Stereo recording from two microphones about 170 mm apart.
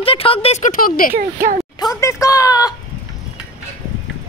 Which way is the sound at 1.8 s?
20° left (ahead or behind).